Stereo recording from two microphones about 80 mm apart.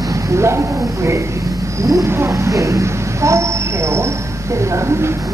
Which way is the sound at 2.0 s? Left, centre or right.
Right.